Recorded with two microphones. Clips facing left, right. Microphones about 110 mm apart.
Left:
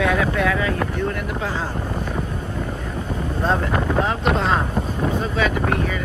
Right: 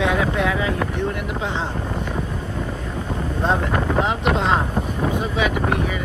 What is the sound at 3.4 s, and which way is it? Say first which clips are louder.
Speech: even; 20° right (ahead or behind).